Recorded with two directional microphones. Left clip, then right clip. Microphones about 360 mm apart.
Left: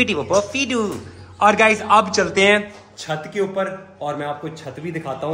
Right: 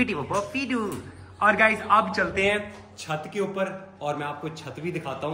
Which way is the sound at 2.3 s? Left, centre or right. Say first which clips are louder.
Left 11 dB; left.